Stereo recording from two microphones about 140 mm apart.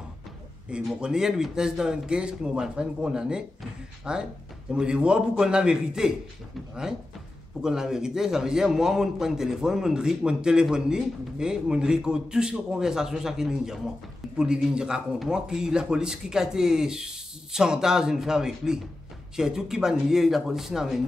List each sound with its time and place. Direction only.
0.7 s a man's voice: 5° right (ahead or behind)